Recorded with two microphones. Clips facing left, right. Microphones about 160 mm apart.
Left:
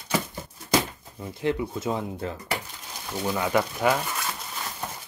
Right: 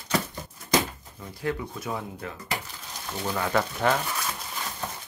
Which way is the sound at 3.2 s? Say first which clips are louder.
Left 2 dB; 10° left (ahead or behind).